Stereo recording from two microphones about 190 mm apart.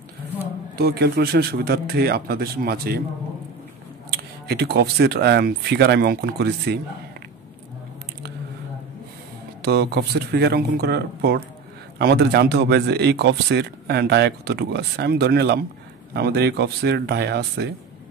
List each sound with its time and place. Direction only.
0.7 s speech: 60° right (ahead or behind)
4.1 s speech: 60° right (ahead or behind)
9.6 s speech: 60° right (ahead or behind)